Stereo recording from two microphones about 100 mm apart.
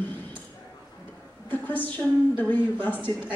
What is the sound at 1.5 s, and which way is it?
A woman's voice, 20° left (ahead or behind).